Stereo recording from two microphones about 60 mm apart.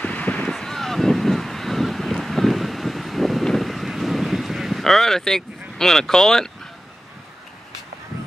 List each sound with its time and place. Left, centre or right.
0.0 s a sound: left
0.5 s wind noise: centre
3.4 s vehicle: centre